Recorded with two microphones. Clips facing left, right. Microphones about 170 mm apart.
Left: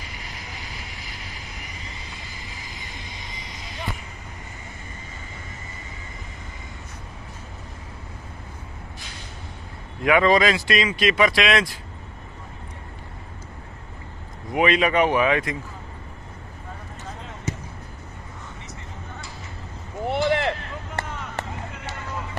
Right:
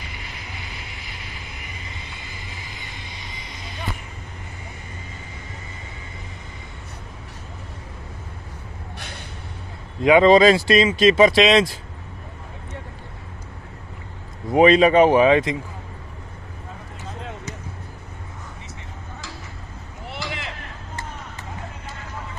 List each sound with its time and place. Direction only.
10.0 s speech: 25° right (ahead or behind)
14.5 s speech: 30° right (ahead or behind)
20.2 s a sound: 65° left (ahead or behind)